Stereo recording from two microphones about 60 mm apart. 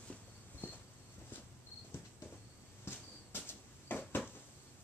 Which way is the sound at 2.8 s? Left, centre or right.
Left.